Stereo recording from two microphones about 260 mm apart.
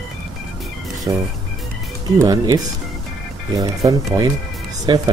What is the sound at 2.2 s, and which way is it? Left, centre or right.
Speech, centre.